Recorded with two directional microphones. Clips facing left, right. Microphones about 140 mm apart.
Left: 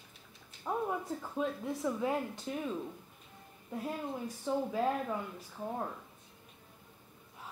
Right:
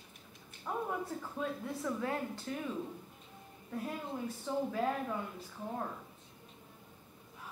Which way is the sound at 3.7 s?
20° left (ahead or behind).